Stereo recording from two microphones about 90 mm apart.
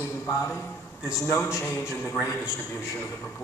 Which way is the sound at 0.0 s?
30° left (ahead or behind).